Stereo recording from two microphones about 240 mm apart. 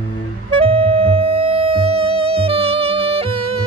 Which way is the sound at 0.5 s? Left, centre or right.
Right.